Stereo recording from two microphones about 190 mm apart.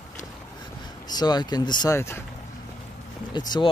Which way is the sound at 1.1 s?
20° left (ahead or behind).